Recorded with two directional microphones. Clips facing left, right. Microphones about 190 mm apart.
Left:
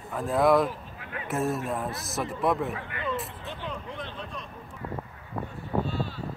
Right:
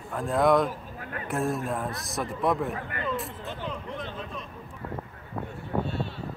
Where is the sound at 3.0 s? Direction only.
Centre (ahead or behind).